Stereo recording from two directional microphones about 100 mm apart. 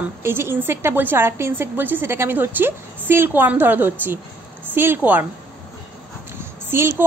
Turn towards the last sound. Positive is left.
turn(degrees=-25)  # may be behind; listen again after turning